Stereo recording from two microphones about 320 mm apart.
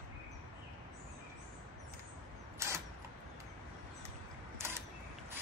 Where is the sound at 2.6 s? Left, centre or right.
Centre.